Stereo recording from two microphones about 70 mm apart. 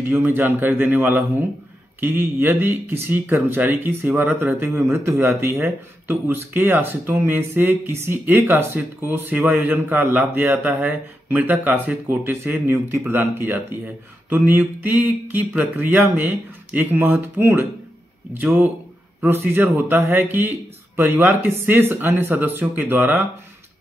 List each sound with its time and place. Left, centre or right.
0.0 s speech: right